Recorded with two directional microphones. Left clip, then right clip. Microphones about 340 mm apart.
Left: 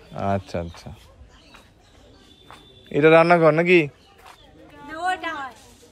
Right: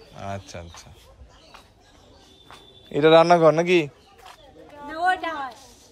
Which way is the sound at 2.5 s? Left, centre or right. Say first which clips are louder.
Left 3 dB; centre.